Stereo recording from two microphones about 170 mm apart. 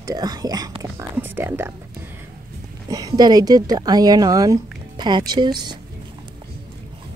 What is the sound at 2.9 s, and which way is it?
Speech, 25° right (ahead or behind).